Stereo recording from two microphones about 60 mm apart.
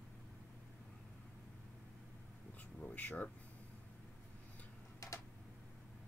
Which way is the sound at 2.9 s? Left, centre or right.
Left.